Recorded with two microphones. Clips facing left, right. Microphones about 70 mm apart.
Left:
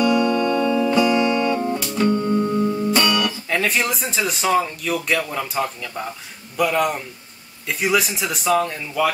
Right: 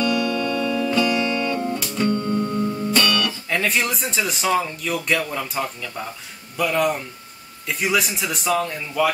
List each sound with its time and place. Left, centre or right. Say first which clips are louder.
0.0 s music: left 4 dB; left
3.4 s speech: left 1 dB; centre